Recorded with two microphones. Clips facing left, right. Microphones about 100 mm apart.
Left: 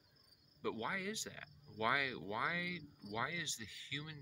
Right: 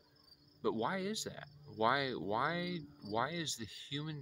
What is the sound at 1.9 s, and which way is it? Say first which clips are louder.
Speech: right 4 dB; 15° right (ahead or behind).